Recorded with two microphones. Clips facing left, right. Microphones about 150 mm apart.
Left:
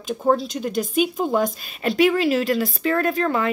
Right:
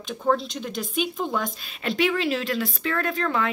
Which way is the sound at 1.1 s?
45° left (ahead or behind).